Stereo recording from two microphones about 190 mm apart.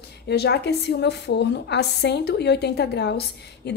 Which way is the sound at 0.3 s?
60° left (ahead or behind).